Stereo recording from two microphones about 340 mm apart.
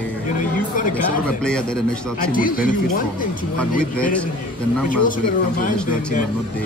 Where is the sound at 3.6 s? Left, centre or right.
Centre.